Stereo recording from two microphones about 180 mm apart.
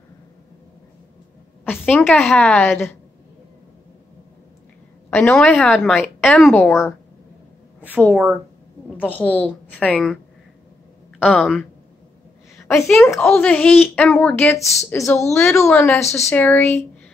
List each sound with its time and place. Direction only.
1.7 s a woman's voice: 10° left (ahead or behind)
5.1 s a woman's voice: 10° left (ahead or behind)
7.8 s a woman's voice: 10° right (ahead or behind)
9.1 s a woman's voice: 10° left (ahead or behind)
11.1 s speech: 5° left (ahead or behind)
12.8 s a woman's voice: centre (ahead or behind)
15.7 s a woman's voice: centre (ahead or behind)
16.3 s a woman's voice: 10° left (ahead or behind)